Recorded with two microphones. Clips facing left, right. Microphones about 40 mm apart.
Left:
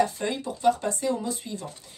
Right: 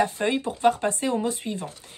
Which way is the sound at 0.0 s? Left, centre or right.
Right.